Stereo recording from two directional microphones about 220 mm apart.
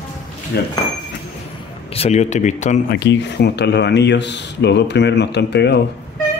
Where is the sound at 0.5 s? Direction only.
45° left (ahead or behind).